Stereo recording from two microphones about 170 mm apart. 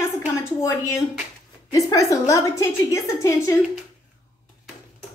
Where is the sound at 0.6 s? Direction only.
20° left (ahead or behind).